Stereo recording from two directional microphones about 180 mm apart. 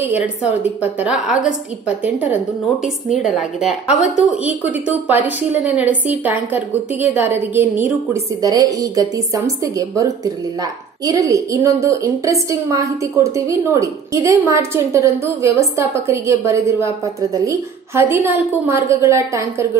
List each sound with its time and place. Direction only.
0.9 s a woman's voice: 5° right (ahead or behind)
7.8 s a woman's voice: 15° right (ahead or behind)